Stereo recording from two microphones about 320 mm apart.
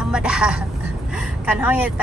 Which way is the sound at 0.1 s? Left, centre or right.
Centre.